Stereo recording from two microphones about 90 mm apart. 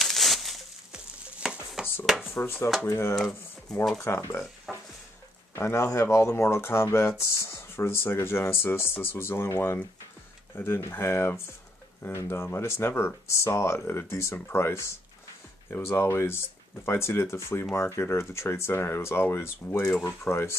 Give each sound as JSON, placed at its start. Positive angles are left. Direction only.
{"t": 0.0, "sound": "a sound", "side_deg": 0}
{"t": 2.0, "sound": "speech", "side_deg": -5}
{"t": 2.3, "sound": "speech", "side_deg": 30}
{"t": 4.1, "sound": "speech", "side_deg": 30}
{"t": 4.7, "sound": "stir", "side_deg": 0}
{"t": 5.5, "sound": "speech", "side_deg": 30}